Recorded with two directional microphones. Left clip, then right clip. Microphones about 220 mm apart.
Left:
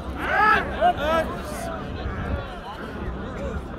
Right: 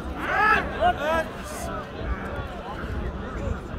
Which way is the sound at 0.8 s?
10° left (ahead or behind).